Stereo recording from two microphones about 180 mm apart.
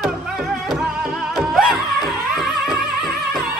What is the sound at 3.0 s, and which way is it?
Music, 55° right (ahead or behind).